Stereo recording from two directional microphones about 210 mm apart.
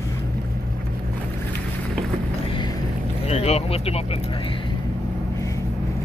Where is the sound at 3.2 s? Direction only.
30° left (ahead or behind).